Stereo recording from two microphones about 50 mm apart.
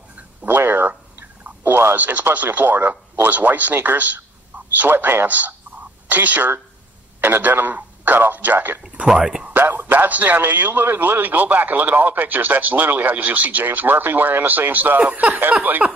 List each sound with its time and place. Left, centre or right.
0.6 s speech: right
1.6 s a sound: right
2.0 s a man's voice: right
9.0 s speech: centre
9.5 s a man's voice: right